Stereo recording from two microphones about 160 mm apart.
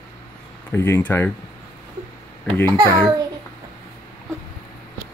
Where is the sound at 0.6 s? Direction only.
15° left (ahead or behind).